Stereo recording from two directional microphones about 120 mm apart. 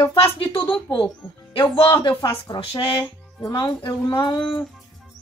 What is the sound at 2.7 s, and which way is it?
Speech, 45° left (ahead or behind).